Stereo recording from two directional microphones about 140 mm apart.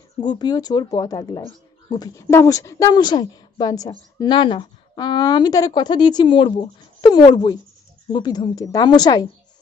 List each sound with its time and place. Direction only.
0.2 s speech: 30° left (ahead or behind)